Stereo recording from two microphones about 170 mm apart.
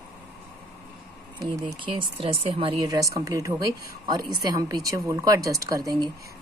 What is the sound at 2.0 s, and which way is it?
Speech, 30° right (ahead or behind).